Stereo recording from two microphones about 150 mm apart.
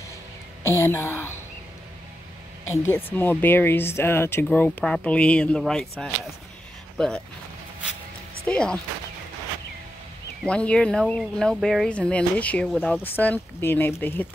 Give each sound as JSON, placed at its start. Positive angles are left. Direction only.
{"t": 0.7, "sound": "a woman's voice", "side_deg": 15}
{"t": 2.7, "sound": "speech", "side_deg": 15}
{"t": 8.5, "sound": "speech", "side_deg": 5}
{"t": 10.4, "sound": "speech", "side_deg": 5}